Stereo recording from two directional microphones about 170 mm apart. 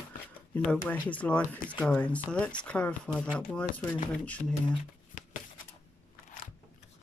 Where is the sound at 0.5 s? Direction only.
10° left (ahead or behind).